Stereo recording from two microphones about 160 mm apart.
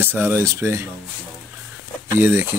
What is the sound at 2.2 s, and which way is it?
Speech, 15° right (ahead or behind).